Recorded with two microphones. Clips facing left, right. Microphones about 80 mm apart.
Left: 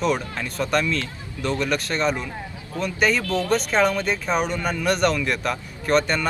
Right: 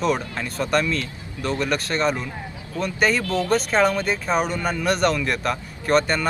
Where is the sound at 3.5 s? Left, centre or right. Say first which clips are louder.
Right 1 dB; centre.